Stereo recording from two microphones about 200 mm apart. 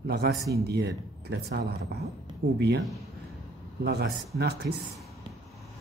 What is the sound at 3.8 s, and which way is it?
Speech, 55° right (ahead or behind).